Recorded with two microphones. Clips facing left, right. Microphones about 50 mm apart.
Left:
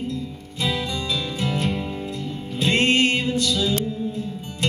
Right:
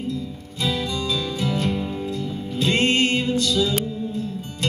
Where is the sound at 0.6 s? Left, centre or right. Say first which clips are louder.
Right 1 dB; left.